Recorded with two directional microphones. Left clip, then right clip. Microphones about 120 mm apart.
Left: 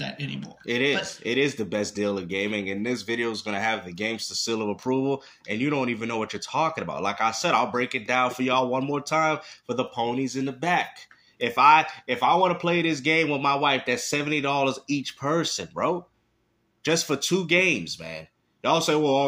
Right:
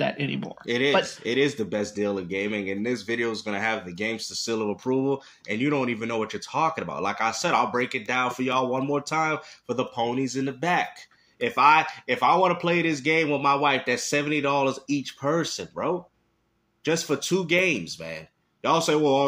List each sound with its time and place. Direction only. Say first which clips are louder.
0.0 s speech: right 7 dB; 35° right (ahead or behind)
0.7 s speech: right 2 dB; 5° left (ahead or behind)
1.7 s speech: even; 20° left (ahead or behind)
5.6 s speech: right 1 dB; 10° left (ahead or behind)
11.3 s a man's voice: left 1 dB; 20° left (ahead or behind)
15.7 s speech: left 2 dB; 40° left (ahead or behind)
16.8 s a man's voice: left 1 dB; 25° left (ahead or behind)